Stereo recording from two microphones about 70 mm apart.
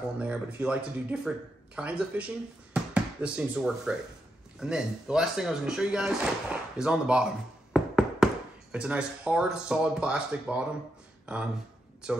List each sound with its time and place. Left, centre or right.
0.2 s speech: centre
2.7 s music: centre
4.6 s speech: centre
7.7 s knock: centre
8.7 s speech: centre
12.0 s speech: centre